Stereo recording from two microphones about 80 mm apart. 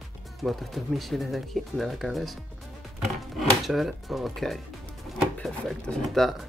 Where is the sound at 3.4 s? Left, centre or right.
Centre.